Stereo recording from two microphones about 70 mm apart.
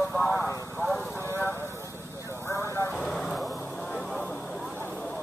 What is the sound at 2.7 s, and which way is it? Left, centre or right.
Vehicle, left.